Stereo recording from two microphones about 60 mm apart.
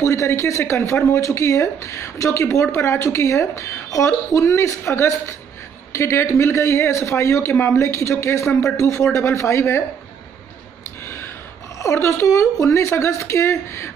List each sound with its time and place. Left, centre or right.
0.0 s speech: left
11.1 s gasp: left
11.8 s speech: left